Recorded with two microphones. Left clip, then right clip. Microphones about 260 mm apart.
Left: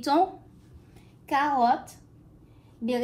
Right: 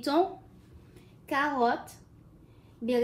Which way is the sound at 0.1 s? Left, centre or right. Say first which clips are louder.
Left 4 dB; left.